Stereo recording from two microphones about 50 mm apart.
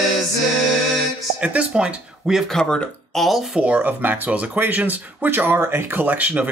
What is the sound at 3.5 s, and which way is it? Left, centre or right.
Speech, right.